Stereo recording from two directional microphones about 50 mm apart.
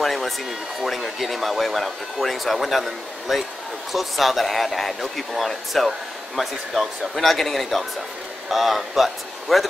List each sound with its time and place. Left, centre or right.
0.0 s hair dryer: centre
0.8 s speech: centre